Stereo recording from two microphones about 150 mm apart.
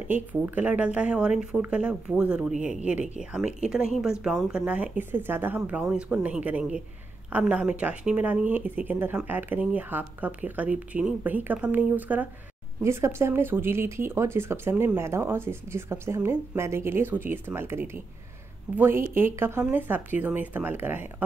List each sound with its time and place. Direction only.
0.1 s speech: 10° right (ahead or behind)